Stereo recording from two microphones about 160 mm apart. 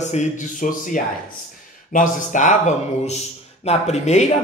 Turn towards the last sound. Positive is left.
turn(degrees=45)  # may be behind; listen again after turning